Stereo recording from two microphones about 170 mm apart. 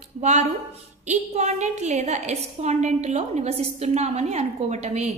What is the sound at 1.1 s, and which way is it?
A woman's voice, 40° right (ahead or behind).